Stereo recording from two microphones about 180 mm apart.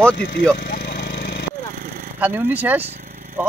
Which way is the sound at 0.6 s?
55° left (ahead or behind).